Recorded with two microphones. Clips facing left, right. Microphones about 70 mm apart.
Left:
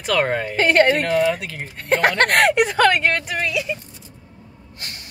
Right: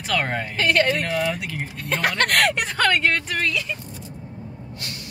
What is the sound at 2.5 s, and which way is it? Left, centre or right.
A woman's voice, centre.